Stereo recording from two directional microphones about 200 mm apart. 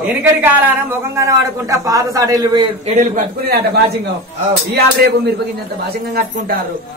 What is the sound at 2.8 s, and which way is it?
Speech, 35° right (ahead or behind).